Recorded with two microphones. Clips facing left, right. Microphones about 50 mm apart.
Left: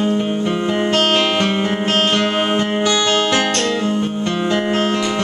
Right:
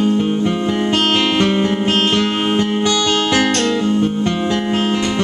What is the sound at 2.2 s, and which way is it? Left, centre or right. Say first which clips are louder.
Music: even; centre.